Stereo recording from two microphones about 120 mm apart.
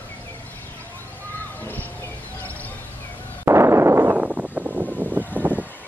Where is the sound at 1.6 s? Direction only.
15° left (ahead or behind).